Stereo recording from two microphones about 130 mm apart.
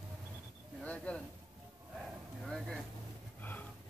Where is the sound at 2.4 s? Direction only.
Centre (ahead or behind).